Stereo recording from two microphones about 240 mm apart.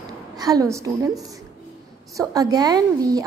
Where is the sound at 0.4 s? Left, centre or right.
Centre.